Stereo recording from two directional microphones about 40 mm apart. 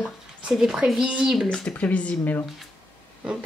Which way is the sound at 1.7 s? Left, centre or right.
Left.